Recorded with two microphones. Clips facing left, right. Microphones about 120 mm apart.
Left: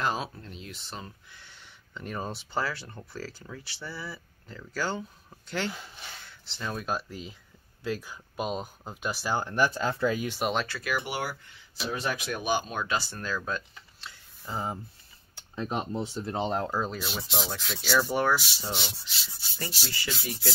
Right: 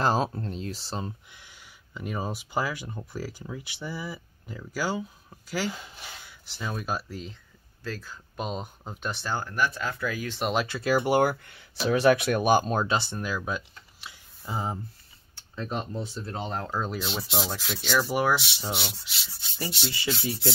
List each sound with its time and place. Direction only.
0.0 s speech: 35° right (ahead or behind)
1.3 s speech: 10° right (ahead or behind)
7.8 s speech: 15° left (ahead or behind)
9.4 s speech: 25° left (ahead or behind)
10.4 s speech: 5° right (ahead or behind)
10.7 s speech: 30° right (ahead or behind)
12.8 s speech: 25° right (ahead or behind)
13.2 s speech: 10° right (ahead or behind)
14.0 s a sound: 15° right (ahead or behind)
15.5 s speech: 15° left (ahead or behind)
16.9 s speech: centre (ahead or behind)